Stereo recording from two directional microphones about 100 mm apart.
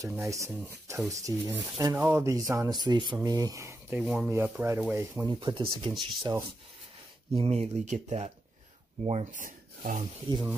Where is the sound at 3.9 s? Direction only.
10° right (ahead or behind).